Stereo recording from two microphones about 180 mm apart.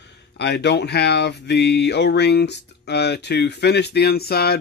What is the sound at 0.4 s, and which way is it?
Speech, 70° left (ahead or behind).